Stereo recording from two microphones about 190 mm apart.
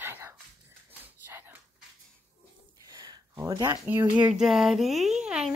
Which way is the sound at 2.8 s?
20° right (ahead or behind).